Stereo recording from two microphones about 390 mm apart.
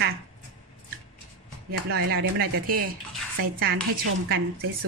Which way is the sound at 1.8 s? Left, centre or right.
Right.